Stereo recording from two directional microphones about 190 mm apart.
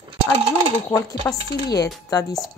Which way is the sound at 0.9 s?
15° left (ahead or behind).